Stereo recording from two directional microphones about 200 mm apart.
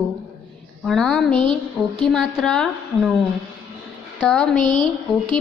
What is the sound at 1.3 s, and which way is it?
Speech, 25° right (ahead or behind).